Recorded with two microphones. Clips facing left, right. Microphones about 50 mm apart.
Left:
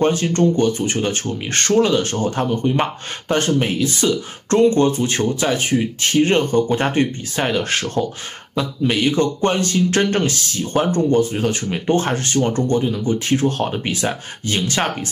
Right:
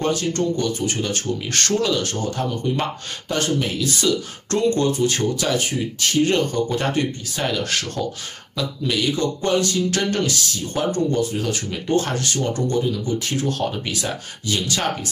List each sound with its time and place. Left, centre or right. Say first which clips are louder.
0.0 s speech: left 5 dB; left